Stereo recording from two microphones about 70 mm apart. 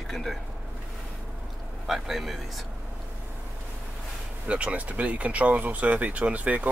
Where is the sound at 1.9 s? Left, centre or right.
Centre.